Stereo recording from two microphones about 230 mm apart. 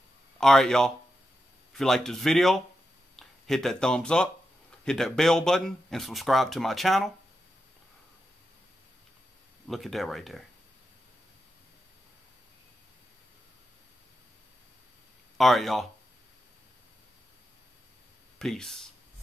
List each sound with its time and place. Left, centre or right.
0.4 s speech: centre
9.7 s speech: centre
15.3 s speech: centre
18.4 s speech: centre